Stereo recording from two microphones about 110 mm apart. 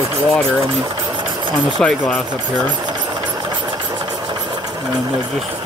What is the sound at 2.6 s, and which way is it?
Speech, 45° right (ahead or behind).